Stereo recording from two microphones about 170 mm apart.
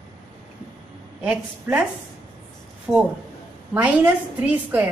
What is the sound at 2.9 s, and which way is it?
A woman's voice, 15° right (ahead or behind).